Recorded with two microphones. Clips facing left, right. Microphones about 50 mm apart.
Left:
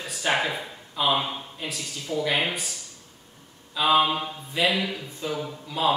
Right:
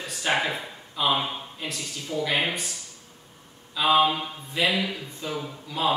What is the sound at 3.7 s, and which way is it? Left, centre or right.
Speech, centre.